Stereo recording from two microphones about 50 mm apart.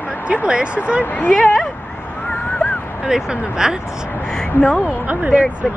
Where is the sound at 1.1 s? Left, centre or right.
Left.